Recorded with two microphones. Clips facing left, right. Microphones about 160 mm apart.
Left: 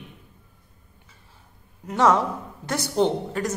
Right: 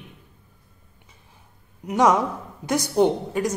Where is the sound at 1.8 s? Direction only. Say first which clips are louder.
Right 1 dB; 15° right (ahead or behind).